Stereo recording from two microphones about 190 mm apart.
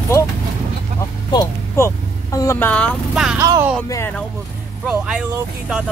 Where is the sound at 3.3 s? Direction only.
15° right (ahead or behind).